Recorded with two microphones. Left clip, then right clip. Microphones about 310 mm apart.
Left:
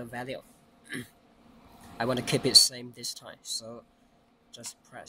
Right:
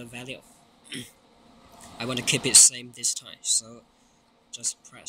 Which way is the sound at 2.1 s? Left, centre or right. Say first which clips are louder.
Right 3 dB; left.